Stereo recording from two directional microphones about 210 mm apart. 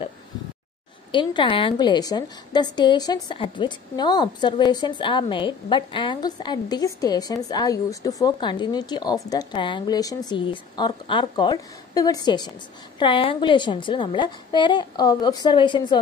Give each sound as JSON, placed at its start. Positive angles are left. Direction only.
{"t": 1.1, "sound": "a woman's voice", "side_deg": 25}